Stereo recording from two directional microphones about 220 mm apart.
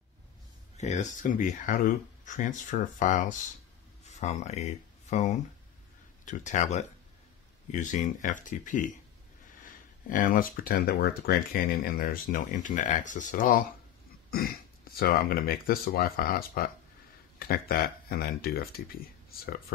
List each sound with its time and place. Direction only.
0.7 s speech: 30° left (ahead or behind)